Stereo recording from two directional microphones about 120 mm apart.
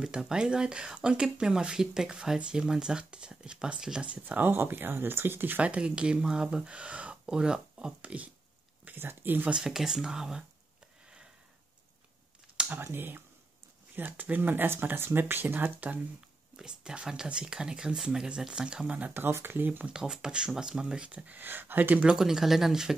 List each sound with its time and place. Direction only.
0.0 s speech: 5° right (ahead or behind)
12.5 s speech: 15° right (ahead or behind)